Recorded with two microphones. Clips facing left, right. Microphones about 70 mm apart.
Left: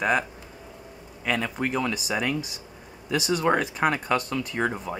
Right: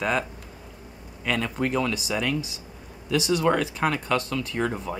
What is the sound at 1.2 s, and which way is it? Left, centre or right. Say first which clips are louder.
Speech: right 1 dB; centre.